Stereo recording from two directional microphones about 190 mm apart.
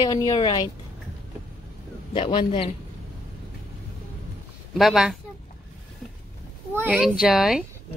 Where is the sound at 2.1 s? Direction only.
25° left (ahead or behind).